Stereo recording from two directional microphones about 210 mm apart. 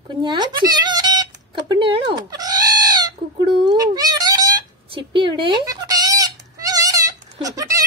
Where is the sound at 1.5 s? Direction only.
25° right (ahead or behind).